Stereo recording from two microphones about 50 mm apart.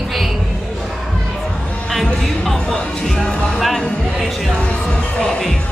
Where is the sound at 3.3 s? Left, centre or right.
Centre.